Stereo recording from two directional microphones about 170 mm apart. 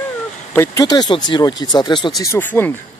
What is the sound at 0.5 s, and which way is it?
Speech, 15° left (ahead or behind).